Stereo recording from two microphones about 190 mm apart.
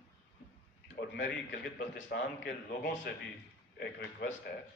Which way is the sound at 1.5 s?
45° left (ahead or behind).